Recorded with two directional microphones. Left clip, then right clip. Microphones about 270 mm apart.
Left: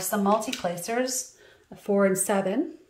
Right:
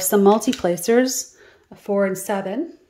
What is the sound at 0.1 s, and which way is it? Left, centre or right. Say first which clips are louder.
Speech: right 9 dB; right.